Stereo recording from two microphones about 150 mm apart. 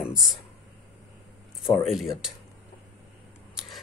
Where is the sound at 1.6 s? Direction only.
Centre (ahead or behind).